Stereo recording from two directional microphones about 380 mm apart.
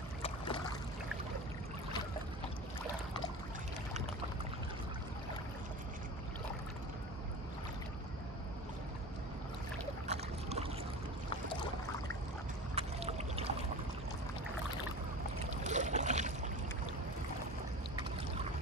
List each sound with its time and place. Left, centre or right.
0.2 s boat: centre
10.0 s boat: centre
12.7 s boat: centre
15.6 s boat: centre